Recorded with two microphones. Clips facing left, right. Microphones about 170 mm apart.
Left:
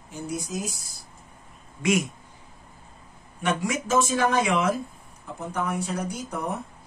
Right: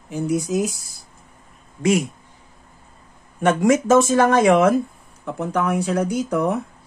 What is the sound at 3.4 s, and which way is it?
Speech, 50° right (ahead or behind).